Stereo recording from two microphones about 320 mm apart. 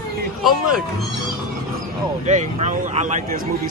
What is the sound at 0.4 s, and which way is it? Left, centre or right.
Speech, centre.